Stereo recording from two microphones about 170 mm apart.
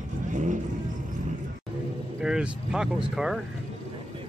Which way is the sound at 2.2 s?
5° right (ahead or behind).